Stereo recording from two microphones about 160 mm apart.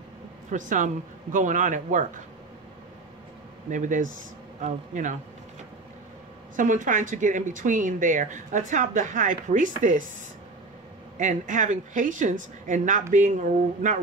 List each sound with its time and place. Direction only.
0.5 s speech: 50° right (ahead or behind)
3.7 s speech: 50° right (ahead or behind)
6.5 s speech: 55° right (ahead or behind)
11.1 s speech: 50° right (ahead or behind)